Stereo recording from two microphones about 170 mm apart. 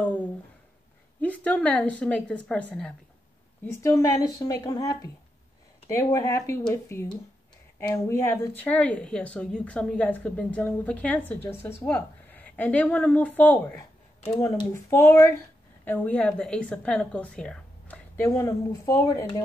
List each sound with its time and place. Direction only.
0.0 s a woman's voice: 10° left (ahead or behind)